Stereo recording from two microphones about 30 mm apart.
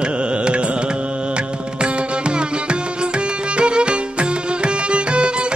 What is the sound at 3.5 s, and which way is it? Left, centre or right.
Music, right.